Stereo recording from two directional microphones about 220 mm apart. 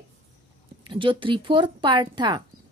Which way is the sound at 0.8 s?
20° right (ahead or behind).